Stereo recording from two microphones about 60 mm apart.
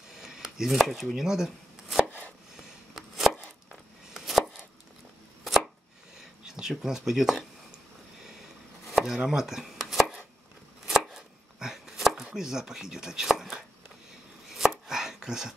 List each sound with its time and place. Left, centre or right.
0.1 s a sound: centre
1.1 s chopping: centre
2.0 s chopping: left
2.5 s chopping: centre
6.1 s a sound: centre
8.8 s chopping: centre
12.4 s speech: centre
14.5 s chopping: centre